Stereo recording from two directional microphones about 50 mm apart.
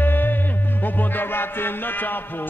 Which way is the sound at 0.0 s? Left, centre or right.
Left.